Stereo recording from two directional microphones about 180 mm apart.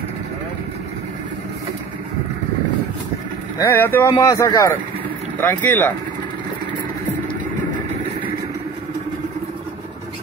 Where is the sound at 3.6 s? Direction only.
15° left (ahead or behind).